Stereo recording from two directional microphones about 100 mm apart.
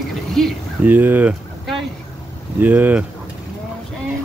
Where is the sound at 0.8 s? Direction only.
15° right (ahead or behind).